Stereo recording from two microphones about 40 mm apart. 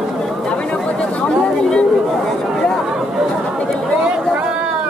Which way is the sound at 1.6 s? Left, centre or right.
Left.